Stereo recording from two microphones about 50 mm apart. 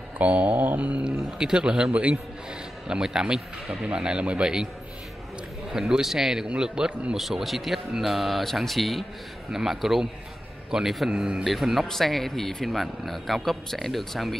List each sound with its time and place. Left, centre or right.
0.2 s speech: right
1.0 s a man's voice: centre
3.3 s speech: centre
3.8 s speech: centre
5.7 s a man's voice: centre
7.2 s a man's voice: centre
11.4 s speech: centre